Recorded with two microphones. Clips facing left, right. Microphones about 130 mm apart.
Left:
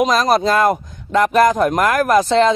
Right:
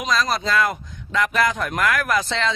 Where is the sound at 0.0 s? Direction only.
50° left (ahead or behind).